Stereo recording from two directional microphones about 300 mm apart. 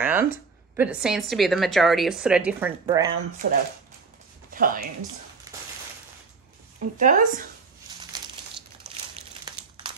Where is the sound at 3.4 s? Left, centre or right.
Right.